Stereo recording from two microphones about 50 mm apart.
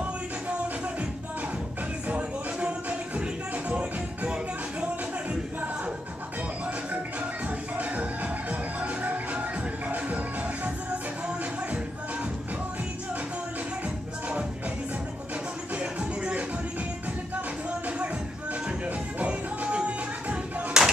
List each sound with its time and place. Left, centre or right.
2.0 s music: right
7.7 s music: right
15.8 s music: centre
17.8 s music: right
20.7 s a sound: centre